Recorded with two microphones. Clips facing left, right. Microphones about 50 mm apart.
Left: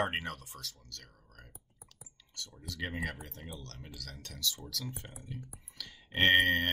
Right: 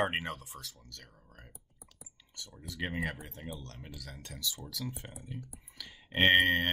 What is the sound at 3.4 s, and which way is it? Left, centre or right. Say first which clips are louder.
Speech: right 3 dB; centre.